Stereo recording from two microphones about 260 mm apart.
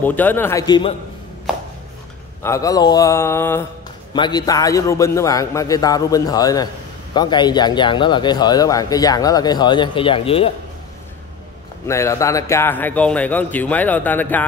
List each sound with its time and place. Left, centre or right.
0.0 s a man's voice: centre
2.4 s a man's voice: centre
11.9 s a man's voice: centre